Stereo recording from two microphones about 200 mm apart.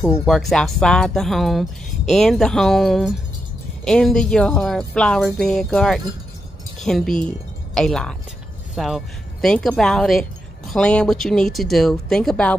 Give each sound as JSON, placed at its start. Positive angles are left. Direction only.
{"t": 0.0, "sound": "speech", "side_deg": 0}